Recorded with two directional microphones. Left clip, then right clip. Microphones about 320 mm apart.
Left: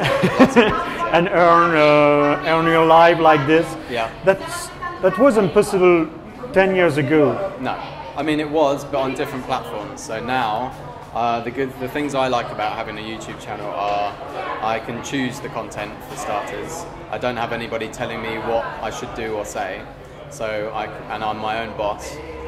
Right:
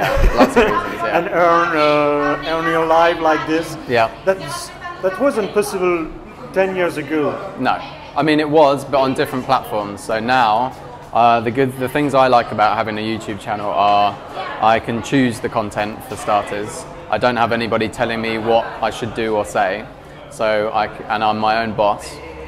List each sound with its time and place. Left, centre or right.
0.1 s a sound: centre
1.1 s speech: centre
5.0 s speech: centre
8.2 s a man's voice: right